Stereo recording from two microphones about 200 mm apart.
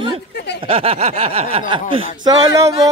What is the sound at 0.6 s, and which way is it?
Speech, 30° right (ahead or behind).